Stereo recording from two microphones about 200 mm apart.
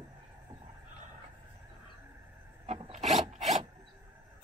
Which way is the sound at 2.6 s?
30° right (ahead or behind).